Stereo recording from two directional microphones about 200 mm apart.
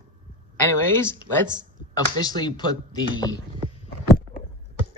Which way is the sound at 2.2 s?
20° left (ahead or behind).